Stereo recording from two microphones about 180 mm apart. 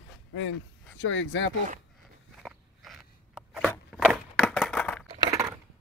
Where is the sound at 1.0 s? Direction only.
90° left.